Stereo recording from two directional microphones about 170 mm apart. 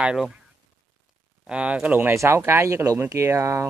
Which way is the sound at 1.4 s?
5° right (ahead or behind).